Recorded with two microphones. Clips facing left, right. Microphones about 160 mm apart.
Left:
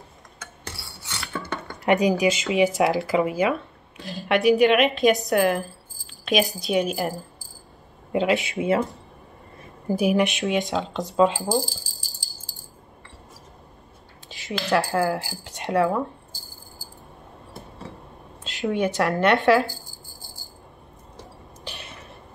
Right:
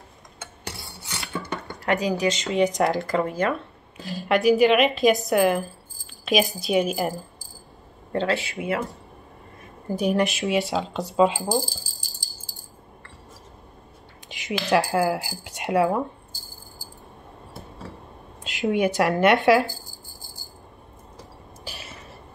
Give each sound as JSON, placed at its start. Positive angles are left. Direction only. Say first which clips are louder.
{"t": 0.4, "sound": "a sound", "louder": "right 2 dB", "side_deg": -20}
{"t": 1.9, "sound": "a woman's voice", "louder": "left 3 dB", "side_deg": 20}
{"t": 8.1, "sound": "speech", "louder": "left 3 dB", "side_deg": 15}
{"t": 9.8, "sound": "a woman's voice", "louder": "left 2 dB", "side_deg": 5}
{"t": 14.3, "sound": "speech", "louder": "right 1 dB", "side_deg": -15}
{"t": 18.4, "sound": "speech", "louder": "right 2 dB", "side_deg": -10}
{"t": 21.6, "sound": "drip", "louder": "left 1 dB", "side_deg": -5}